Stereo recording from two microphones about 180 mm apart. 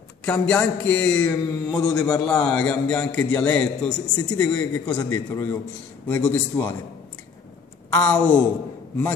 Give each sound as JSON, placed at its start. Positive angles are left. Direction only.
{"t": 0.2, "sound": "mantra", "side_deg": 5}
{"t": 3.5, "sound": "a man's voice", "side_deg": 5}
{"t": 8.0, "sound": "a man's voice", "side_deg": 5}